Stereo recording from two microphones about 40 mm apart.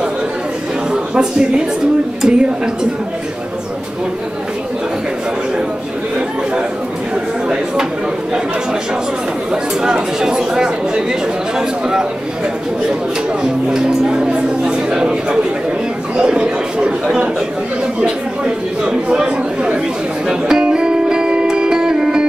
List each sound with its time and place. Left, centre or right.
2.2 s speech: centre
9.5 s speech: centre
13.4 s speech: centre
16.2 s speech: right
20.6 s music: right